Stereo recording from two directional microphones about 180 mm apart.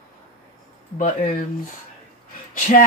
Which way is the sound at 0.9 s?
50° left (ahead or behind).